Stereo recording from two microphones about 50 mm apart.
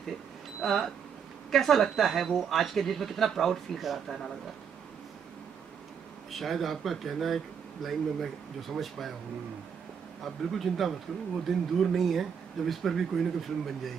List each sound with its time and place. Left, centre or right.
0.6 s speech: centre
6.3 s speech: centre
10.2 s speech: centre